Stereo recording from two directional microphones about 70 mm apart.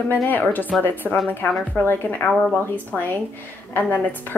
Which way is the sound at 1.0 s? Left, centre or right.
Centre.